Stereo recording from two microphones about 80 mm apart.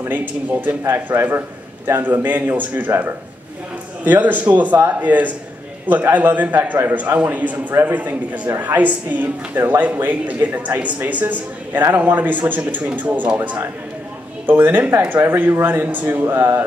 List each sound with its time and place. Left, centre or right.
0.0 s speech: right